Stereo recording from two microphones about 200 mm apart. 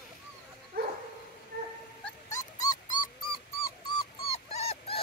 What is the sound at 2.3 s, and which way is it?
Dog, 20° left (ahead or behind).